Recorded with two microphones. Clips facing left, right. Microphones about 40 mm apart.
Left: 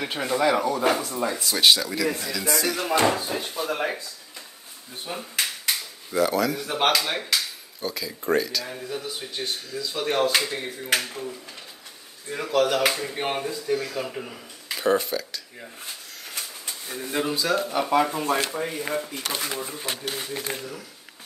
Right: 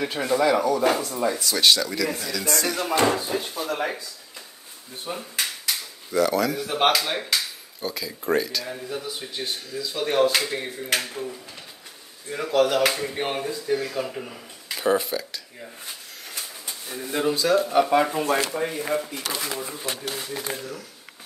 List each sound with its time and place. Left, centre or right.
0.0 s speech: centre
5.1 s speech: centre
6.1 s speech: centre
16.8 s speech: centre
20.1 s speech: left